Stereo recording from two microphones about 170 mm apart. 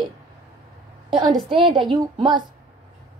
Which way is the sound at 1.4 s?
30° right (ahead or behind).